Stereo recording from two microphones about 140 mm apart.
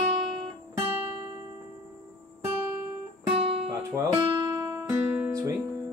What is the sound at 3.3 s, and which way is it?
Music, 40° right (ahead or behind).